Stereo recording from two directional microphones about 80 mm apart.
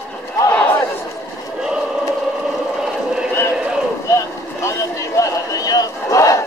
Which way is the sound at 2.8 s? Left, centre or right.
Centre.